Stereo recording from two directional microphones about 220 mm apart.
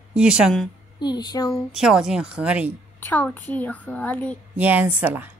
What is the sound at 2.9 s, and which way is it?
Speech, 10° left (ahead or behind).